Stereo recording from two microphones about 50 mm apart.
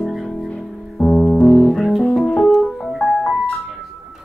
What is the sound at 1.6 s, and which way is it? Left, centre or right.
Music, centre.